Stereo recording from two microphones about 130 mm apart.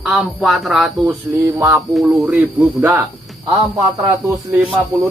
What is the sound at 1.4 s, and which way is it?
Speech, 20° right (ahead or behind).